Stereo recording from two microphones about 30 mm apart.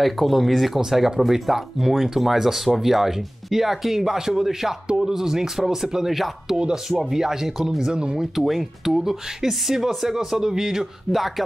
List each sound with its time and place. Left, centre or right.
0.0 s speech: centre
0.7 s speech: centre
6.5 s speech: centre
7.8 s speech: right
8.4 s speech: centre